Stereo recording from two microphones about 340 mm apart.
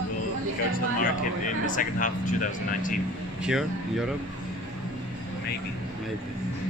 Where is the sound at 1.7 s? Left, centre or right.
Left.